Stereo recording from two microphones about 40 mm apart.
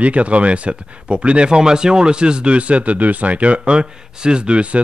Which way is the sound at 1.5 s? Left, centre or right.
Centre.